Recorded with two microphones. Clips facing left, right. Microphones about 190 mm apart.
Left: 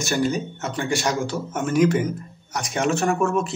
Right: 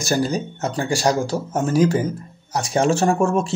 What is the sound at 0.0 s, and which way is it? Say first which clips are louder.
Speech: right 2 dB; 35° right (ahead or behind).